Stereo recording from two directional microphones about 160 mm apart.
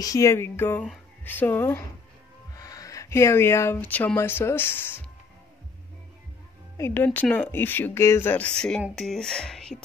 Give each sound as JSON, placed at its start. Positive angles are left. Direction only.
{"t": 0.0, "sound": "speech", "side_deg": 20}
{"t": 6.8, "sound": "speech", "side_deg": 15}